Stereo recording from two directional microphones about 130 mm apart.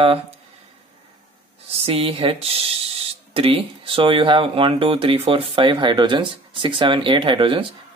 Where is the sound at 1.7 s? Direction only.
50° right (ahead or behind).